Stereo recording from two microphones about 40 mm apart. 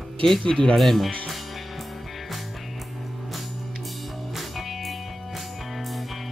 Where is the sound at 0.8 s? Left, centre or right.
Centre.